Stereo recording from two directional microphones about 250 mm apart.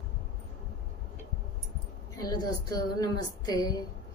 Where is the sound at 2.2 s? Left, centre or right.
Centre.